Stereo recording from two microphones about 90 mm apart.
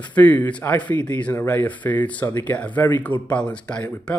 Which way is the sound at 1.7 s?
20° left (ahead or behind).